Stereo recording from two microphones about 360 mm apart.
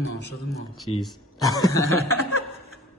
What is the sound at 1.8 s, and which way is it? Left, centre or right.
Speech, left.